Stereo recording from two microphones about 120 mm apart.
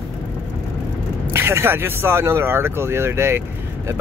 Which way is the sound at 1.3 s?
20° right (ahead or behind).